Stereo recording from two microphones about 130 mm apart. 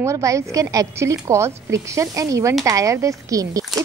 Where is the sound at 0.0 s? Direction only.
25° right (ahead or behind).